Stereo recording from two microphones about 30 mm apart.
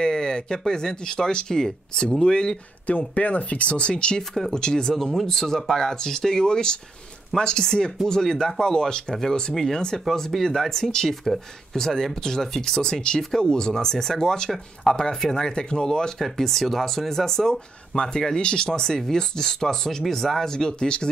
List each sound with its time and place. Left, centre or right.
0.0 s speech: left
2.9 s speech: left
4.2 s speech: centre
4.5 s speech: left
4.8 s speech: centre
16.3 s speech: centre; by 21.1 s left